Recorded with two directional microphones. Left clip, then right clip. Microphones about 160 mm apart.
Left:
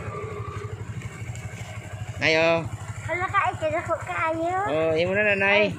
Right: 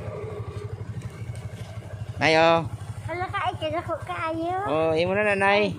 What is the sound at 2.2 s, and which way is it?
Speech, 30° right (ahead or behind).